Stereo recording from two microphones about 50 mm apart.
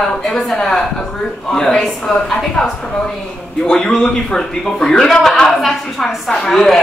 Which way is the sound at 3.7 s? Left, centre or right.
Centre.